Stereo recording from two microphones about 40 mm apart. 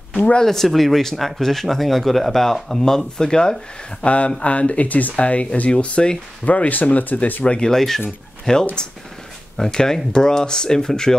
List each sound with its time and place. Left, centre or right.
0.1 s a sound: left
0.4 s speech: centre
4.0 s speech: left
7.4 s speech: left
7.7 s speech: centre
8.5 s speech: centre